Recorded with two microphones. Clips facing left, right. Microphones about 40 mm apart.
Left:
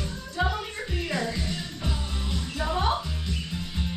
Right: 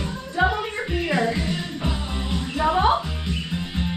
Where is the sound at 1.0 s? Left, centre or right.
Right.